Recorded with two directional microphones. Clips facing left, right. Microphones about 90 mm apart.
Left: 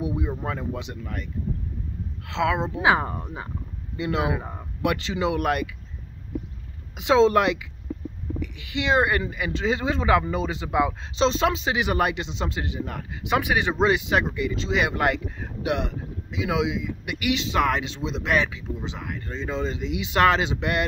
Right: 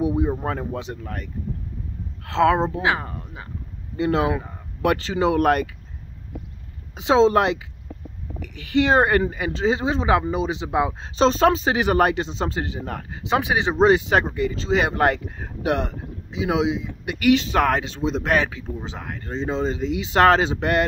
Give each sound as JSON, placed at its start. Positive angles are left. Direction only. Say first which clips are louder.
{"t": 0.0, "sound": "speech", "louder": "right 6 dB", "side_deg": -30}
{"t": 2.8, "sound": "speech", "louder": "left 2 dB", "side_deg": 15}
{"t": 3.9, "sound": "speech", "louder": "right 5 dB", "side_deg": -35}
{"t": 4.3, "sound": "speech", "louder": "right 3 dB", "side_deg": 15}
{"t": 4.8, "sound": "speech", "louder": "right 4 dB", "side_deg": -40}
{"t": 7.0, "sound": "speech", "louder": "right 2 dB", "side_deg": -30}
{"t": 8.4, "sound": "speech", "louder": "right 10 dB", "side_deg": -40}
{"t": 11.1, "sound": "speech", "louder": "right 5 dB", "side_deg": -40}